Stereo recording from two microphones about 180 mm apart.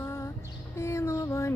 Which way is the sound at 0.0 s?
15° left (ahead or behind).